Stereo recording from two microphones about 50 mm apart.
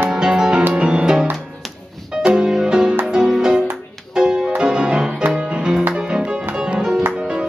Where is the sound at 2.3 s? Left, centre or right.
Centre.